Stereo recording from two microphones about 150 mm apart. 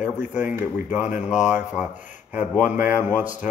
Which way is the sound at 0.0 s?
10° right (ahead or behind).